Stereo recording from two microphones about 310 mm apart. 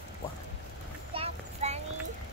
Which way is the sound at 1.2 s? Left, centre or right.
Right.